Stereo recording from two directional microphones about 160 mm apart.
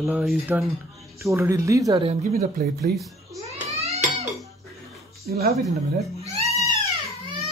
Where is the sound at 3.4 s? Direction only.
40° right (ahead or behind).